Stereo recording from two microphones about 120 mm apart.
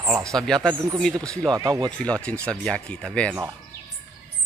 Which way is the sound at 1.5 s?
35° right (ahead or behind).